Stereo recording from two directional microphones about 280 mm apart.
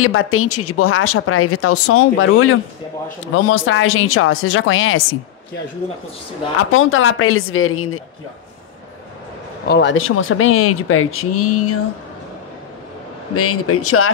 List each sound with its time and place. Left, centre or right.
0.0 s speech: left
6.7 s speech: left
9.7 s speech: left
13.3 s speech: left